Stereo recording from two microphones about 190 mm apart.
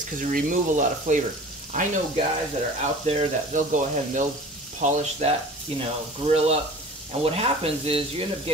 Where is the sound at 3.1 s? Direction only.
35° right (ahead or behind).